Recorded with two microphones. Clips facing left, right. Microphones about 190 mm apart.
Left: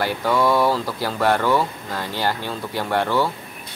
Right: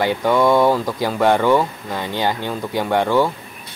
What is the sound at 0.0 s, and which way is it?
Speech, 15° right (ahead or behind).